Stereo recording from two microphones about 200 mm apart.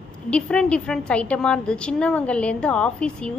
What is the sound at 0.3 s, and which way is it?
A woman's voice, 5° left (ahead or behind).